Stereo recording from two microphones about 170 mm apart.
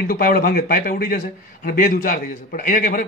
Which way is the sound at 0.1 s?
60° left (ahead or behind).